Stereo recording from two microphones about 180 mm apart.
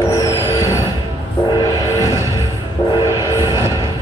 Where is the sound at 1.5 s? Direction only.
20° left (ahead or behind).